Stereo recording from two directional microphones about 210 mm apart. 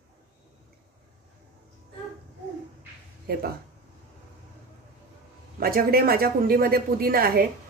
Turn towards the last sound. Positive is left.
turn(degrees=-45)  # may be behind; listen again after turning